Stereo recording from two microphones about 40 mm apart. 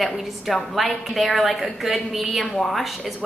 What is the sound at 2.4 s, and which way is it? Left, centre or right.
Speech, centre.